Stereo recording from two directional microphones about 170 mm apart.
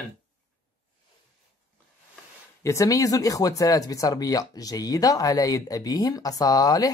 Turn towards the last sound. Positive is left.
turn(degrees=20)  # may be behind; listen again after turning